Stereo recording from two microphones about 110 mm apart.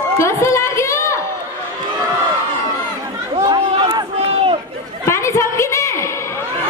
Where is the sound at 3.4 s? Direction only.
45° right (ahead or behind).